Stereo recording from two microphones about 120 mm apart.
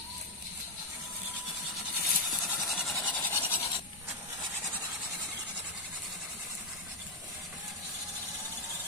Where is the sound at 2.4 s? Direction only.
Centre (ahead or behind).